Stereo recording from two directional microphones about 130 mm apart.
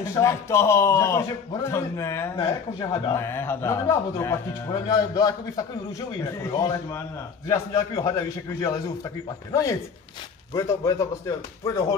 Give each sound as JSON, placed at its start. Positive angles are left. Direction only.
{"t": 0.0, "sound": "a man's voice", "side_deg": 25}